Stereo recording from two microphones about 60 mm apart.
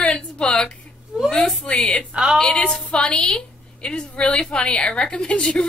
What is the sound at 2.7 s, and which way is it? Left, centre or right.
A woman's voice, centre.